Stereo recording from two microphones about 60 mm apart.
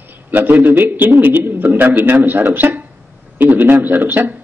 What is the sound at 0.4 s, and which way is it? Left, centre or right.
A man's voice, right.